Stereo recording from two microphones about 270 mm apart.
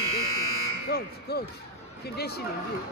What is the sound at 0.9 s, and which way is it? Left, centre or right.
Speech, left.